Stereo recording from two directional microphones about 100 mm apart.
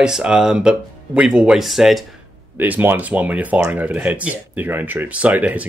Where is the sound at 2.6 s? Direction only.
20° right (ahead or behind).